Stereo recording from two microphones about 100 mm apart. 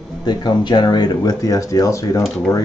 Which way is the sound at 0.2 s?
45° left (ahead or behind).